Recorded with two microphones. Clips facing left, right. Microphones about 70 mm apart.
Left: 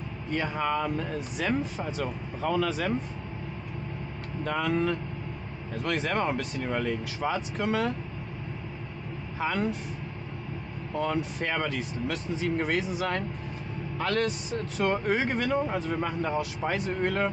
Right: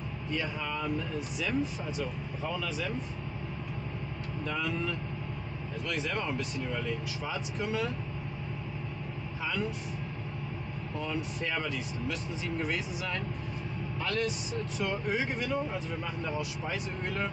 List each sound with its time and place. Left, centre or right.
0.3 s speech: left
2.4 s speech: left
4.5 s speech: left
9.4 s speech: left
11.1 s speech: left